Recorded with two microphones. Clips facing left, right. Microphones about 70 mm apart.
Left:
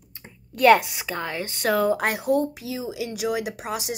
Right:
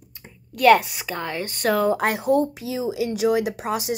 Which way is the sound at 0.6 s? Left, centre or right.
Centre.